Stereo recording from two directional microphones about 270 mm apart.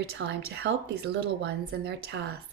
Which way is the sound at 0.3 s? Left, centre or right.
Right.